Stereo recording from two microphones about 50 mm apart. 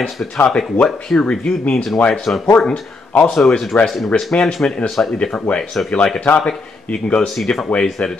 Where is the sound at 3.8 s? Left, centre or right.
Centre.